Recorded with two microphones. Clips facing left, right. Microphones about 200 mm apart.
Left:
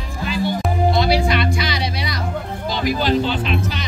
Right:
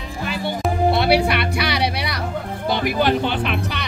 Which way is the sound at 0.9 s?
65° right (ahead or behind).